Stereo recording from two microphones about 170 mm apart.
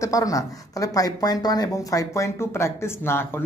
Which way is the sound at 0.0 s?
20° left (ahead or behind).